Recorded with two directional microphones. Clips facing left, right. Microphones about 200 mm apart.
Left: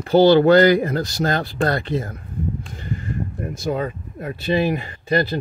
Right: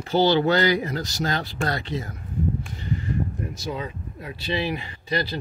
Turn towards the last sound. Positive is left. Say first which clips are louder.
# left 7 dB
turn(degrees=50)  # may be behind; listen again after turning